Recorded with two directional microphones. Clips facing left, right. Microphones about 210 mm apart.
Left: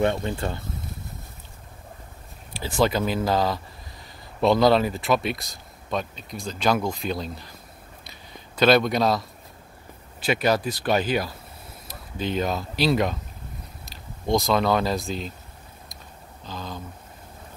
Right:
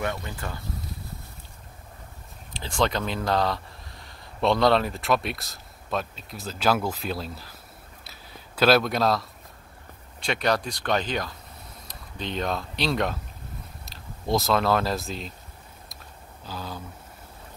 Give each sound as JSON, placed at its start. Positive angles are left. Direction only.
{"t": 0.0, "sound": "speech", "side_deg": 25}
{"t": 2.5, "sound": "speech", "side_deg": 5}
{"t": 8.0, "sound": "a sound", "side_deg": -5}
{"t": 10.2, "sound": "speech", "side_deg": 5}
{"t": 16.4, "sound": "speech", "side_deg": -10}